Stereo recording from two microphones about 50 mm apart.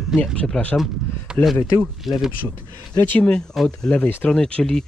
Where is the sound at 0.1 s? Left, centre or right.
Centre.